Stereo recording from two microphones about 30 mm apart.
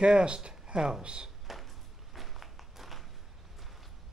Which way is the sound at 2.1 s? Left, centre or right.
Centre.